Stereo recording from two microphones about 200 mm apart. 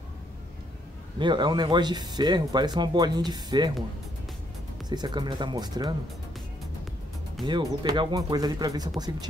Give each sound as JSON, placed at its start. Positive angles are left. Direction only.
{"t": 1.2, "sound": "speech", "side_deg": -25}
{"t": 4.8, "sound": "speech", "side_deg": -20}
{"t": 7.4, "sound": "speech", "side_deg": -20}